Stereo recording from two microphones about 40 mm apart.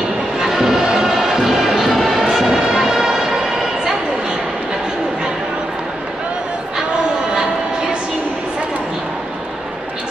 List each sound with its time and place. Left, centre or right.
0.4 s music: centre